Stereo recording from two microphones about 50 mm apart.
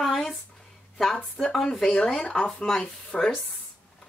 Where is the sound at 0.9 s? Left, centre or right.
Centre.